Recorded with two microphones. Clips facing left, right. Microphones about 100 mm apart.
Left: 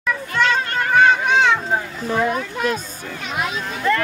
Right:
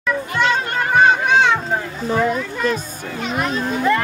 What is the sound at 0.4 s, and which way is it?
Children playing, 20° right (ahead or behind).